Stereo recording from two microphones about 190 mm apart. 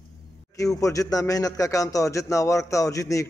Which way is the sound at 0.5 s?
15° left (ahead or behind).